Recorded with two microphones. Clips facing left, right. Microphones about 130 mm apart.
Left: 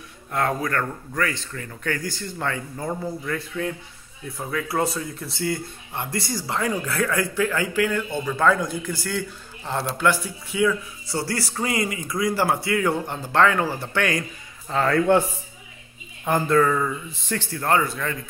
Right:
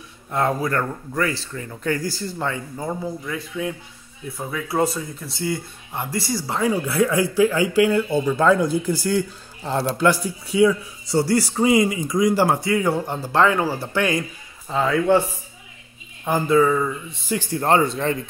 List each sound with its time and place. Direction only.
0.3 s a man's voice: 25° right (ahead or behind)
1.8 s a man's voice: 35° right (ahead or behind)
2.3 s a man's voice: 15° right (ahead or behind)
8.9 s a man's voice: 15° right (ahead or behind)
9.7 s a man's voice: 30° right (ahead or behind)
11.1 s a man's voice: 15° right (ahead or behind)
14.7 s speech: 5° right (ahead or behind)
16.3 s speech: centre (ahead or behind)
17.4 s speech: 25° right (ahead or behind)